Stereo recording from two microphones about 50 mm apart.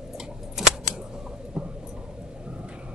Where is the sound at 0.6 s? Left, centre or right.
Centre.